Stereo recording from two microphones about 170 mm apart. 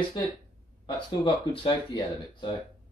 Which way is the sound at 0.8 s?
30° left (ahead or behind).